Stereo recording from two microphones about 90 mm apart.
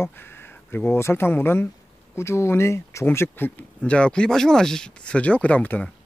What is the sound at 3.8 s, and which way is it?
Speech, 10° left (ahead or behind).